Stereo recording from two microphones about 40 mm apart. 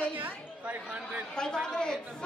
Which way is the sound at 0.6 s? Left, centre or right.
Right.